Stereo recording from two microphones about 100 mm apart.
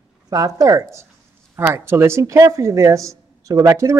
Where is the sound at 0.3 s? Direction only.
35° right (ahead or behind).